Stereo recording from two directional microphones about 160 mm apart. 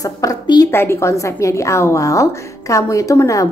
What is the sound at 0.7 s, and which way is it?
A woman's voice, 15° left (ahead or behind).